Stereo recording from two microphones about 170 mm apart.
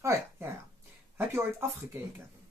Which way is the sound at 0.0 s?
15° right (ahead or behind).